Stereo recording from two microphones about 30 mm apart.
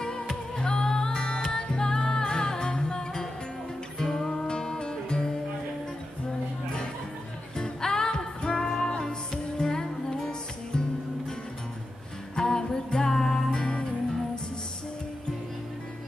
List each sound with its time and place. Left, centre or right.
0.0 s music: left
7.5 s music: left
12.4 s music: left